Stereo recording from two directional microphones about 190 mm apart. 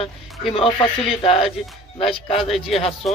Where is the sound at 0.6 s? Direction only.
30° left (ahead or behind).